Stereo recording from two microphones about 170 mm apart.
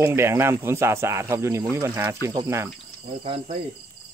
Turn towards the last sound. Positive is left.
turn(degrees=-30)  # may be behind; listen again after turning